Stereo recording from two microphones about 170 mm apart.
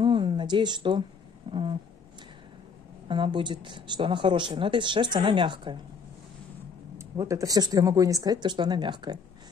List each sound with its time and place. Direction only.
0.0 s a sound: 30° right (ahead or behind)
1.5 s insect: 30° right (ahead or behind)
3.1 s speech: 30° right (ahead or behind)
7.0 s speech: 20° right (ahead or behind)